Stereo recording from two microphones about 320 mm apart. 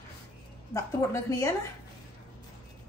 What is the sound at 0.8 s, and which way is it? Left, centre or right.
Speech, centre.